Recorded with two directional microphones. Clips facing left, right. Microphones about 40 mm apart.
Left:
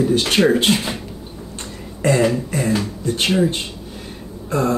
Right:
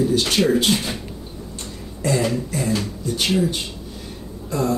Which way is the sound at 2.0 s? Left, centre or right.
Left.